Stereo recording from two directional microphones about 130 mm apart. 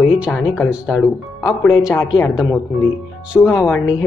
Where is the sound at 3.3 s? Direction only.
10° left (ahead or behind).